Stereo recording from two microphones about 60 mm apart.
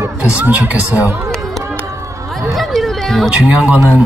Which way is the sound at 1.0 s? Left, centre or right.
Right.